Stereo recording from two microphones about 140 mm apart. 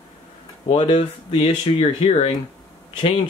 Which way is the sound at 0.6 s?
45° left (ahead or behind).